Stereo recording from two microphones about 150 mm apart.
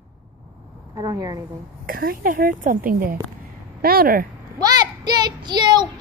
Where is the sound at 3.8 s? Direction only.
90° right.